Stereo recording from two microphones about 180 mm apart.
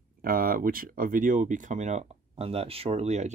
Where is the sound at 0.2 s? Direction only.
55° right (ahead or behind).